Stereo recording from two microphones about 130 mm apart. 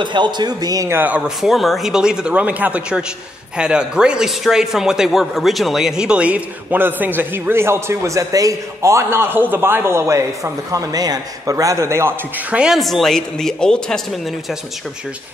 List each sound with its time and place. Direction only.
0.0 s speech: 35° right (ahead or behind)
0.9 s speech: 10° right (ahead or behind)
12.5 s a woman's voice: 5° right (ahead or behind)